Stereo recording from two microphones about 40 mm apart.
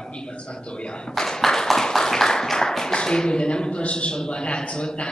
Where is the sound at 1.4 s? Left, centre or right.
Centre.